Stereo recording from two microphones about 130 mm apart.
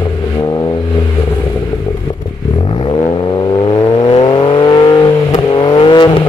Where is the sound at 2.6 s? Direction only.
40° left (ahead or behind).